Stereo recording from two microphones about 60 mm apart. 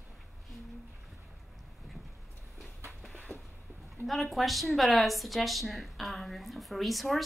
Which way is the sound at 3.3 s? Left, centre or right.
Right.